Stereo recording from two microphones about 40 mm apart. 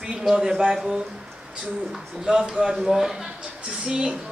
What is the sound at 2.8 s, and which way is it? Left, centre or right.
Speech, centre.